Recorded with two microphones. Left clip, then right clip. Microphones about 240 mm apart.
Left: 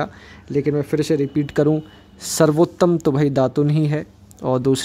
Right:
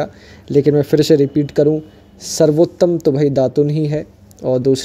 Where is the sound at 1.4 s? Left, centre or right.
Centre.